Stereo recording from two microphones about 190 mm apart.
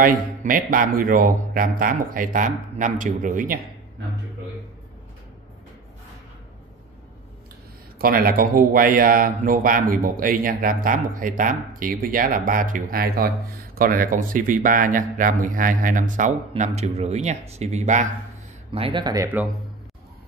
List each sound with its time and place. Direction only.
0.0 s a man's voice: 45° right (ahead or behind)
8.0 s a man's voice: 50° right (ahead or behind)
18.7 s speech: 25° right (ahead or behind)